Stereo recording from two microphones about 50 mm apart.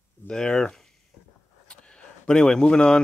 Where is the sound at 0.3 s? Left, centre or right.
Centre.